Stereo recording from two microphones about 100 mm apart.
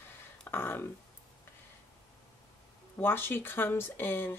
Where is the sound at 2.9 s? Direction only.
25° left (ahead or behind).